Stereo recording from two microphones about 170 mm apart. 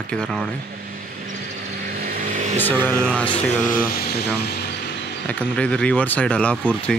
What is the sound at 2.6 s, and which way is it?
Speech, 10° left (ahead or behind).